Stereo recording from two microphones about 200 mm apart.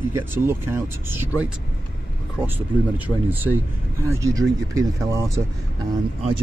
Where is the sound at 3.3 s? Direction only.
10° right (ahead or behind).